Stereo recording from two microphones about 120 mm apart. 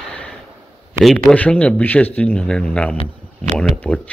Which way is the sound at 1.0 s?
Centre (ahead or behind).